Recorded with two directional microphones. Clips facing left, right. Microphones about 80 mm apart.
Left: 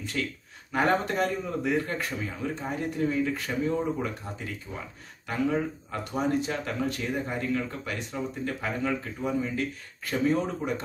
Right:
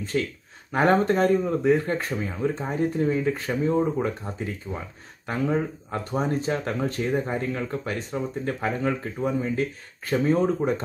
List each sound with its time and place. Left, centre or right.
0.1 s speech: right
4.7 s speech: right
5.2 s speech: right